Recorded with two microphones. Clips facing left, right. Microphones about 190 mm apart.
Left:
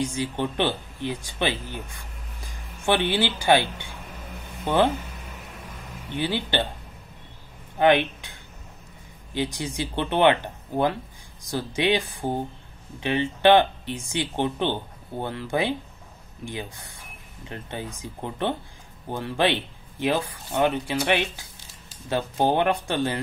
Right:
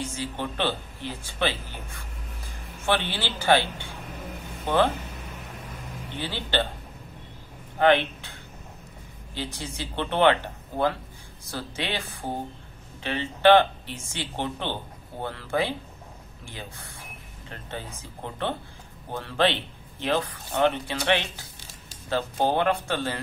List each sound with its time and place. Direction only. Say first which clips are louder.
0.0 s speech: left 5 dB; 15° left (ahead or behind)
2.9 s speech: left 4 dB; 15° left (ahead or behind)
4.6 s speech: left 2 dB; 15° left (ahead or behind)
6.1 s speech: left 4 dB; 15° left (ahead or behind)
7.8 s speech: left 1 dB; 15° left (ahead or behind)
9.3 s speech: left 6 dB; 15° left (ahead or behind)
11.4 s speech: left 8 dB; 15° left (ahead or behind)
13.0 s speech: left 1 dB; 15° left (ahead or behind)